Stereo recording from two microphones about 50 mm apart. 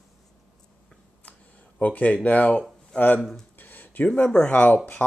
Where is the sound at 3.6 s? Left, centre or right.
Left.